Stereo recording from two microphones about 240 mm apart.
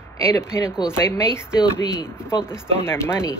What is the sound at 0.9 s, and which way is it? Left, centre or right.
Speech, centre.